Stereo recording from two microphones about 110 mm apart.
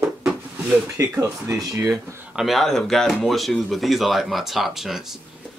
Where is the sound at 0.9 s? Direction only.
30° right (ahead or behind).